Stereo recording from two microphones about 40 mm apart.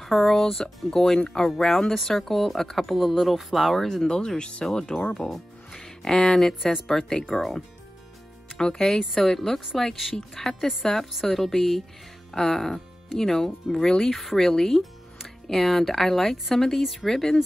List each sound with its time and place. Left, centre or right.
0.3 s a woman's voice: centre
4.4 s a woman's voice: left
7.2 s speech: centre
8.5 s a woman's voice: centre